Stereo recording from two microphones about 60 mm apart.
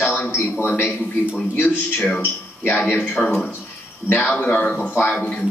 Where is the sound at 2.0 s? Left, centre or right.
Left.